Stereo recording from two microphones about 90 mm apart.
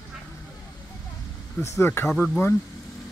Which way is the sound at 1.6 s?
35° left (ahead or behind).